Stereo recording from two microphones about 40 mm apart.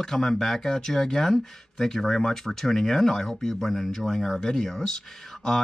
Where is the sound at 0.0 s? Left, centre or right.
Centre.